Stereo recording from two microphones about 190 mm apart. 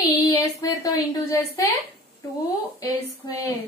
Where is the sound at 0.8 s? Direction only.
15° left (ahead or behind).